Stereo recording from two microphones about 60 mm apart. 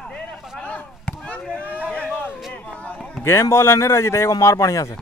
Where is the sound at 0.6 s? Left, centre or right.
Centre.